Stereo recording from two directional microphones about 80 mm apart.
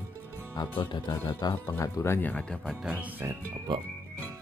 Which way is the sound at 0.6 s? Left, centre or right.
Left.